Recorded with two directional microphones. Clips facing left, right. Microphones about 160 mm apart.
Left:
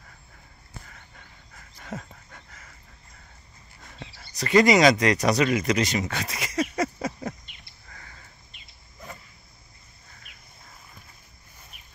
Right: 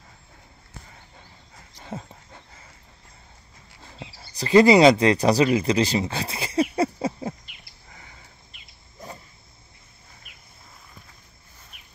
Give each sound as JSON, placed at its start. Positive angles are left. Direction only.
{"t": 1.8, "sound": "a sound", "side_deg": -30}
{"t": 4.1, "sound": "speech", "side_deg": -30}
{"t": 7.9, "sound": "sniff", "side_deg": -15}